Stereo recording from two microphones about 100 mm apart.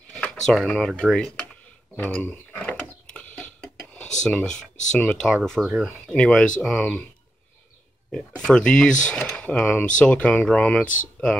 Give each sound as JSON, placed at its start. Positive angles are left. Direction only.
{"t": 0.5, "sound": "speech", "side_deg": 5}
{"t": 2.6, "sound": "a sound", "side_deg": 15}
{"t": 5.4, "sound": "speech", "side_deg": 5}
{"t": 8.5, "sound": "speech", "side_deg": 10}